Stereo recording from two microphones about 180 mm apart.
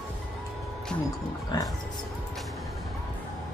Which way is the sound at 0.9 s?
25° left (ahead or behind).